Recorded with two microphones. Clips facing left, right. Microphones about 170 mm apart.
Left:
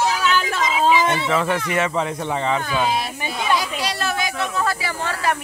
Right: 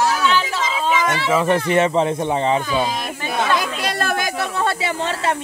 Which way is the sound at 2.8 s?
40° right (ahead or behind).